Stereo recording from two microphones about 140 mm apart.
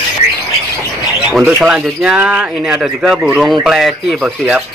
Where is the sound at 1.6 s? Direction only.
5° right (ahead or behind).